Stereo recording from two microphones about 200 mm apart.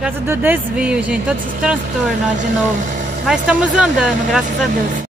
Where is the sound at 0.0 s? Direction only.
10° right (ahead or behind).